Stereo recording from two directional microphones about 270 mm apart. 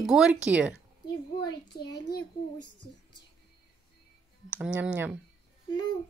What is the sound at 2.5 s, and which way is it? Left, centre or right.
Speech, left.